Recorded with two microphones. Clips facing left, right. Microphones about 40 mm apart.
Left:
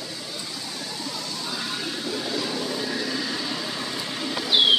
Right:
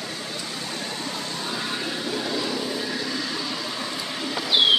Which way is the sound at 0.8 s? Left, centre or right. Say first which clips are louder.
Right 2 dB; right.